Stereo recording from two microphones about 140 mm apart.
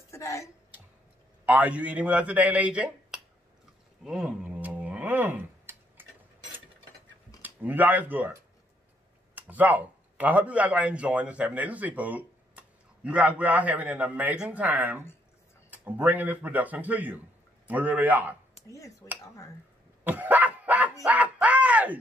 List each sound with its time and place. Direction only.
0.1 s speech: 20° left (ahead or behind)
1.4 s speech: 10° right (ahead or behind)
4.0 s a sound: 5° right (ahead or behind)
7.4 s speech: 15° right (ahead or behind)
19.0 s speech: 20° left (ahead or behind)
20.0 s dog: 10° right (ahead or behind)
21.0 s a sound: 10° right (ahead or behind)